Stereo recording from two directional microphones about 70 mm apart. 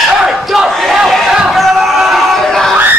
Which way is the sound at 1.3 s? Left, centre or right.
Centre.